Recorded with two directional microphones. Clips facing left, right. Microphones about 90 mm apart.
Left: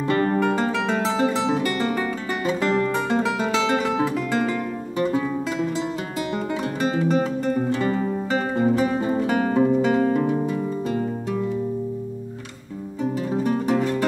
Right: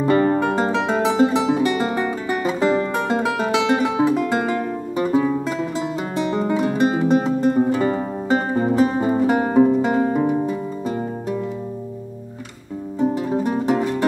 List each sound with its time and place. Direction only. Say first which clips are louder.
0.1 s music: right 2 dB; 20° right (ahead or behind)
6.5 s music: right 5 dB; 20° right (ahead or behind)
13.0 s music: right 3 dB; 15° right (ahead or behind)